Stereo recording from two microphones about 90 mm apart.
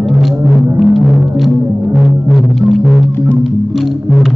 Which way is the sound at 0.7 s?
Centre (ahead or behind).